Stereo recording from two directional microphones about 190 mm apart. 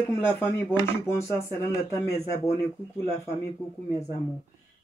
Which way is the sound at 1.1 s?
15° left (ahead or behind).